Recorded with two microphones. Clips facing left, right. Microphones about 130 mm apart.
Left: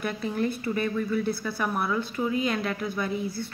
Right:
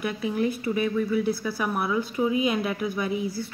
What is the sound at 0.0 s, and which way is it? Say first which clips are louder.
A woman's voice: right 2 dB; 5° right (ahead or behind).